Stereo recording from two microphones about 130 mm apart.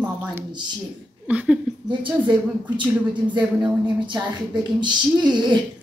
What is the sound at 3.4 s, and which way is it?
Speech, 10° right (ahead or behind).